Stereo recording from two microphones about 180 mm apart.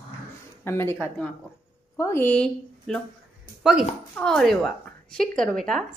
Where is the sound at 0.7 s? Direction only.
15° left (ahead or behind).